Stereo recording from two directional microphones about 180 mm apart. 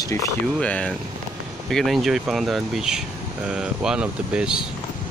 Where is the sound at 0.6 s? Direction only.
5° left (ahead or behind).